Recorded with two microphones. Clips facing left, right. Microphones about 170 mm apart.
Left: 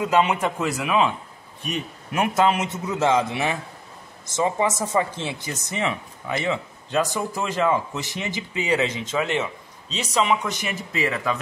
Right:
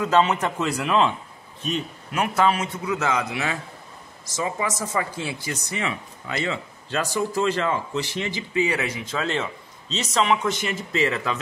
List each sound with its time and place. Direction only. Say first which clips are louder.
0.0 s a man's voice: even; 10° left (ahead or behind)
1.6 s a man's voice: right 2 dB; 15° left (ahead or behind)